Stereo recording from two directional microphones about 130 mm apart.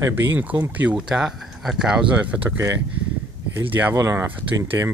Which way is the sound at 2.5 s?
20° right (ahead or behind).